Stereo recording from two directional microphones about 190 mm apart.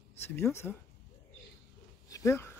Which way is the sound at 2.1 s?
15° left (ahead or behind).